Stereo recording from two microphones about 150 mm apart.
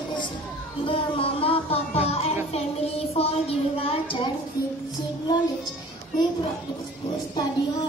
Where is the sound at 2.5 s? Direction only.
45° left (ahead or behind).